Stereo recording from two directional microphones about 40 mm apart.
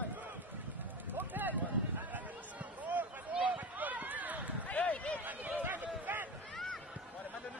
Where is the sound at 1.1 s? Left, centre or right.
Right.